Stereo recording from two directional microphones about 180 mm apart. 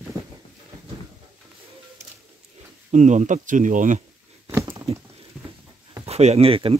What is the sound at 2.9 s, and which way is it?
Speech, 40° right (ahead or behind).